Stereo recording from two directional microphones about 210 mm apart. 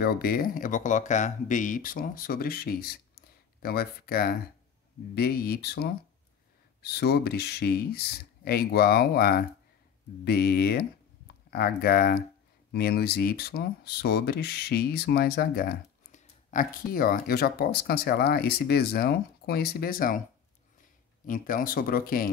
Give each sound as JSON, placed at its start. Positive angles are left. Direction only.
{"t": 0.0, "sound": "speech", "side_deg": 45}
{"t": 21.3, "sound": "speech", "side_deg": 40}